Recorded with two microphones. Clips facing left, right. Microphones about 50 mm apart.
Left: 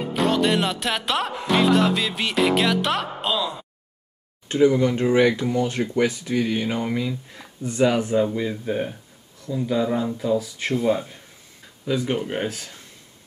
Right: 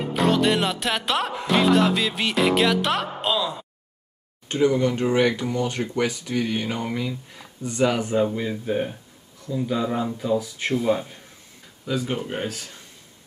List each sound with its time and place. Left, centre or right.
0.1 s music: centre
4.6 s speech: centre
8.1 s music: centre
11.8 s speech: centre
12.4 s speech: left